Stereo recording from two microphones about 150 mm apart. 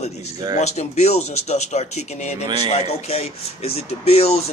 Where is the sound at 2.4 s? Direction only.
30° right (ahead or behind).